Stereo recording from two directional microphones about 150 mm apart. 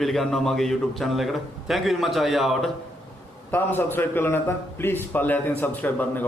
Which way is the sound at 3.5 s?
15° left (ahead or behind).